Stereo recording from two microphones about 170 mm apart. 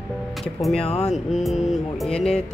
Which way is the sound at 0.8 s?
40° left (ahead or behind).